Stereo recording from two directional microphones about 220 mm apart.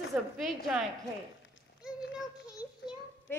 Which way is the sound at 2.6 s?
5° right (ahead or behind).